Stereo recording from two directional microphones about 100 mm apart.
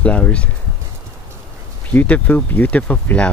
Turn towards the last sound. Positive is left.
turn(degrees=15)  # may be behind; listen again after turning